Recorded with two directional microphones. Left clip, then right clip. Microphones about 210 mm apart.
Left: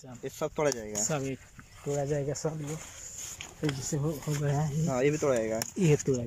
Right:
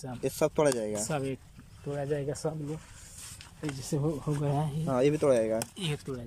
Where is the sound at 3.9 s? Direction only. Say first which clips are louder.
Right 2 dB; 10° right (ahead or behind).